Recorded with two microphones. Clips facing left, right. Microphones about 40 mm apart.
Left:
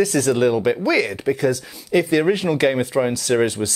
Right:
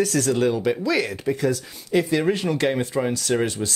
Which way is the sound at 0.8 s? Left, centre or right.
Centre.